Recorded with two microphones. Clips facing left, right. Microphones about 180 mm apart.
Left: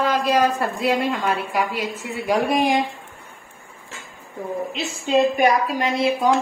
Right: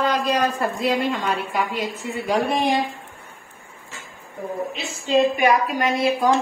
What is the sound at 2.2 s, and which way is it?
Speech, 10° left (ahead or behind).